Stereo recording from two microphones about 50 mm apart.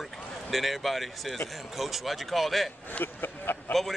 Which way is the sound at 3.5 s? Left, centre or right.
Left.